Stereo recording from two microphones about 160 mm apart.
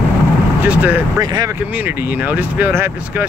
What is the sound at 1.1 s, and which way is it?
Speech, 20° right (ahead or behind).